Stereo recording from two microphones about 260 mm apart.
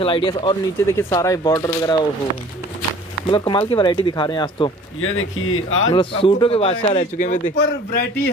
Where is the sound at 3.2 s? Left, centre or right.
Centre.